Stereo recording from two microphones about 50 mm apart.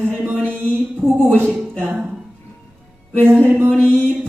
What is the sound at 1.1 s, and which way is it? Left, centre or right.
Speech, left.